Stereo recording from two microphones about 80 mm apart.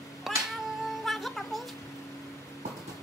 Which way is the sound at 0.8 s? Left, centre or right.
Centre.